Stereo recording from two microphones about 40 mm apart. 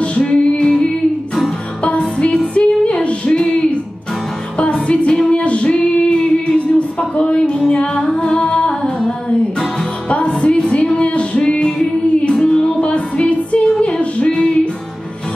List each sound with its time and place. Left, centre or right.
0.0 s music: left
4.8 s music: left
5.3 s female singing: left
7.6 s music: left